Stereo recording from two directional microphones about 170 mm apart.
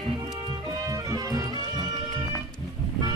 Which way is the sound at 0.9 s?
20° right (ahead or behind).